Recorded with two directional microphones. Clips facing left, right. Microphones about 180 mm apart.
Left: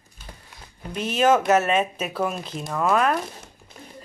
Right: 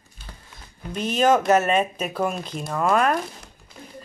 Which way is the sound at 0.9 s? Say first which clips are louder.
Even; 5° left (ahead or behind).